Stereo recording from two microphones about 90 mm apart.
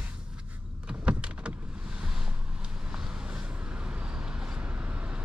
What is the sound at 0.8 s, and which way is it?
Power windows, 15° right (ahead or behind).